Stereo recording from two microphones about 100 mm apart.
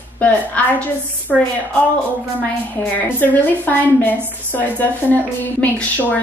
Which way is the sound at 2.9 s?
15° left (ahead or behind).